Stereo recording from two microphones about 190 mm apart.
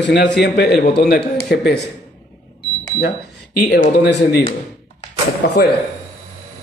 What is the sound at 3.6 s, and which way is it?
Speech, 50° left (ahead or behind).